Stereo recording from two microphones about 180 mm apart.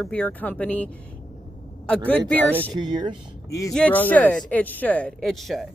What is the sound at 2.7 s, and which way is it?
Speech, 25° right (ahead or behind).